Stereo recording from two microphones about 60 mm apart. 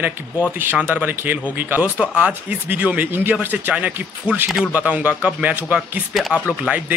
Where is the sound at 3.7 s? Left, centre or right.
Centre.